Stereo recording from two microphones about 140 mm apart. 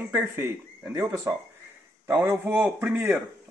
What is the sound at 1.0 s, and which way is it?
Speech, 30° right (ahead or behind).